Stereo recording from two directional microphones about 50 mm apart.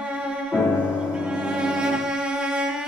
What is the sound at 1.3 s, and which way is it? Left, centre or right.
Music, centre.